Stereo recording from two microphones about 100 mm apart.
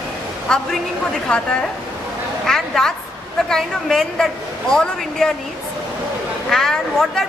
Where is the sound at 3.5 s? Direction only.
5° left (ahead or behind).